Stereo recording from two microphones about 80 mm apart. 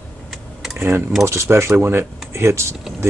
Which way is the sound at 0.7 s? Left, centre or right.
Right.